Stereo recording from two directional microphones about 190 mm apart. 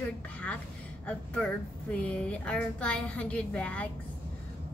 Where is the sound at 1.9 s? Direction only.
5° left (ahead or behind).